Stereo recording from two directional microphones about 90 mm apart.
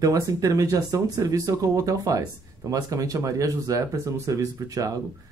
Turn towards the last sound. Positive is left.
turn(degrees=-40)  # may be behind; listen again after turning